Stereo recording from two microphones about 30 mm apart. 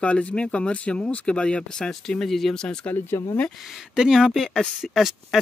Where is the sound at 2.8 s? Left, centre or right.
Left.